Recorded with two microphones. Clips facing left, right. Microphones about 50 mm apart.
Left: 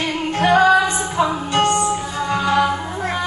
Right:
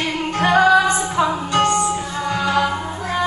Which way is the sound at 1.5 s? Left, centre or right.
Left.